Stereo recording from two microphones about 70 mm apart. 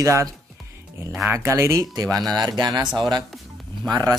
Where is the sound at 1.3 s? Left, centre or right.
Right.